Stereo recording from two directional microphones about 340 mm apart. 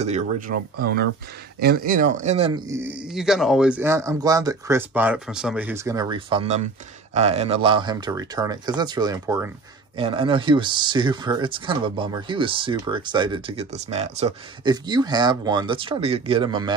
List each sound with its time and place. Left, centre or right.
0.0 s speech: right